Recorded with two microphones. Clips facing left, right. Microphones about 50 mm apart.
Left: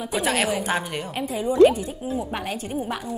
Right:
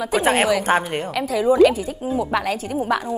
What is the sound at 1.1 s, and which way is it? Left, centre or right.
A woman's voice, right.